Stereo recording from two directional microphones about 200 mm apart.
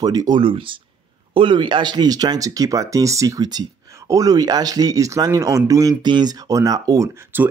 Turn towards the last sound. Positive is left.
turn(degrees=-10)  # may be behind; listen again after turning